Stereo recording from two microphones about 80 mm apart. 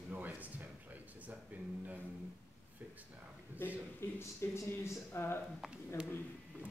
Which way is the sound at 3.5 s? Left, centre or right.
Right.